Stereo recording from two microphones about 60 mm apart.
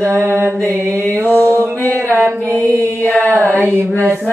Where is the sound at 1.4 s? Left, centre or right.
Right.